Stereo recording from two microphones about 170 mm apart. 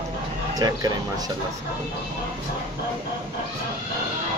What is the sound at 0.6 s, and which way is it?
Speech, 20° right (ahead or behind).